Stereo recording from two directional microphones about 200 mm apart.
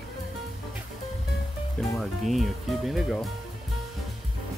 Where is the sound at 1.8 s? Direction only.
Centre (ahead or behind).